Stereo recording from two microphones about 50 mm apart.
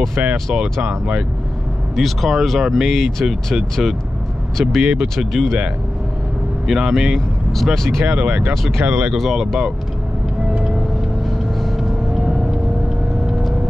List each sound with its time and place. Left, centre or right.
0.1 s speech: right
0.8 s speech: right
2.0 s speech: centre
4.6 s speech: centre
5.3 s speech: centre
6.7 s speech: centre
7.5 s speech: centre
8.2 s speech: right
8.8 s speech: right
9.1 s speech: centre
10.5 s vehicle: centre
11.2 s vehicle: centre
13.3 s vehicle: centre